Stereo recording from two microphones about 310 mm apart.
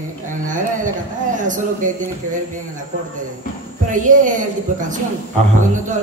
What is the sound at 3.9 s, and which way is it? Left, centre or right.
A woman's voice, right.